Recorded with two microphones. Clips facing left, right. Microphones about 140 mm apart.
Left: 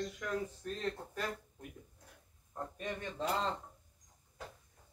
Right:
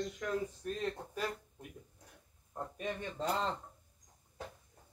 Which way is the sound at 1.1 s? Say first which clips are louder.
Right 1 dB; 10° right (ahead or behind).